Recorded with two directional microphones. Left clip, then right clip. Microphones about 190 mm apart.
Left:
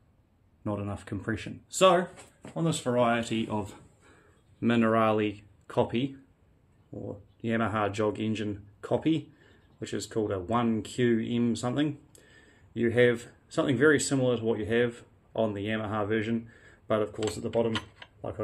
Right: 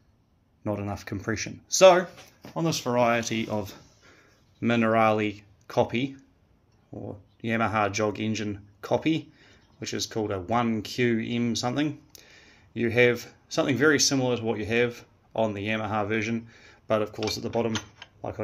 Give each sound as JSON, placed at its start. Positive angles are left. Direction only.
{"t": 0.7, "sound": "speech", "side_deg": -10}
{"t": 7.4, "sound": "speech", "side_deg": -15}